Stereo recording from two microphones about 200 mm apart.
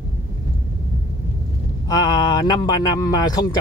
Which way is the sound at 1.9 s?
20° left (ahead or behind).